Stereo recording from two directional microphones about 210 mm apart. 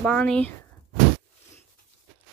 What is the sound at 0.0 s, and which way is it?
Speech, 5° left (ahead or behind).